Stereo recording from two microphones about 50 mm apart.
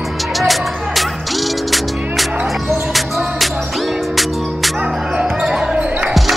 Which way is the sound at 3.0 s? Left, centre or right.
Centre.